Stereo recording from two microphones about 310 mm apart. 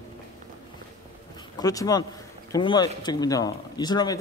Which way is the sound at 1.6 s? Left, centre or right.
Centre.